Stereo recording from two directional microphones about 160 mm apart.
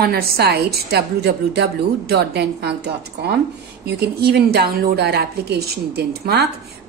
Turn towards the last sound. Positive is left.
turn(degrees=-90)